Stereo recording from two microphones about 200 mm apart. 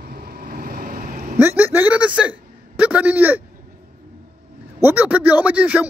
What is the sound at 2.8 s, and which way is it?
Speech, 5° right (ahead or behind).